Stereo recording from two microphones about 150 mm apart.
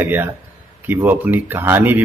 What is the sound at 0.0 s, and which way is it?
A man's voice, 15° right (ahead or behind).